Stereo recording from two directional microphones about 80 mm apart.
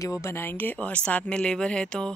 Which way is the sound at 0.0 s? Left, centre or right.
Left.